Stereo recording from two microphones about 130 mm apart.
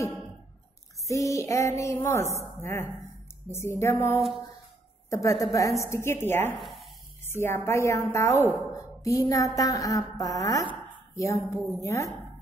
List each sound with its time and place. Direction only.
1.0 s a woman's voice: 25° left (ahead or behind)
6.6 s a sound: centre (ahead or behind)
7.2 s a woman's voice: 20° left (ahead or behind)